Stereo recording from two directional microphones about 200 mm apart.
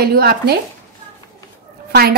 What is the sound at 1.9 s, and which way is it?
Speech, 50° right (ahead or behind).